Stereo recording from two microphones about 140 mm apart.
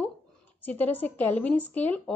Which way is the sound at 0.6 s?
15° left (ahead or behind).